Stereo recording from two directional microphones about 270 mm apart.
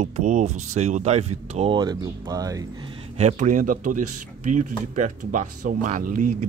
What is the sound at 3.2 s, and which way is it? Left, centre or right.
Speech, right.